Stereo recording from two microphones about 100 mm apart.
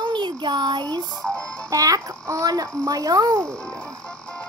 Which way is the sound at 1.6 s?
35° right (ahead or behind).